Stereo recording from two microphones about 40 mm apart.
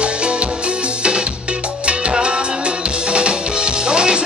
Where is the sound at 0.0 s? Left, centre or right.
Right.